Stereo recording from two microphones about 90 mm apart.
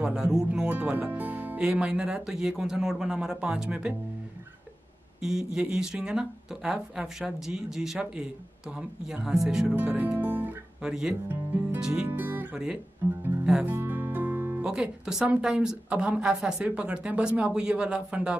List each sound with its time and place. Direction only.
0.0 s speech: 10° right (ahead or behind)
5.2 s speech: 5° right (ahead or behind)
9.8 s guitar: 15° right (ahead or behind)
10.8 s speech: 5° right (ahead or behind)
11.2 s speech: 20° right (ahead or behind)
12.1 s guitar: 20° right (ahead or behind)
13.7 s music: 20° right (ahead or behind)
14.6 s speech: 10° right (ahead or behind)